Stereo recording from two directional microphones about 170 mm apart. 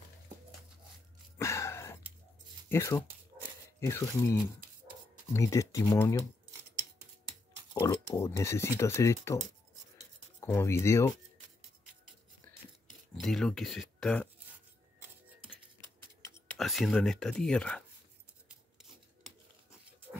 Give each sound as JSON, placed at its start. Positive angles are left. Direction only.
{"t": 1.4, "sound": "a sound", "side_deg": 15}
{"t": 2.7, "sound": "speech", "side_deg": 15}
{"t": 7.8, "sound": "speech", "side_deg": 15}
{"t": 10.4, "sound": "speech", "side_deg": 15}
{"t": 13.2, "sound": "speech", "side_deg": 5}
{"t": 16.5, "sound": "speech", "side_deg": 0}